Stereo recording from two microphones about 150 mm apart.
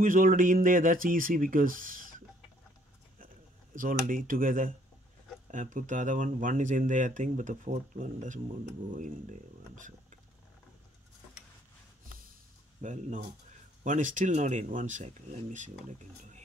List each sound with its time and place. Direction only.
0.0 s speech: 60° right (ahead or behind)
3.7 s speech: 65° right (ahead or behind)
12.8 s speech: 55° right (ahead or behind)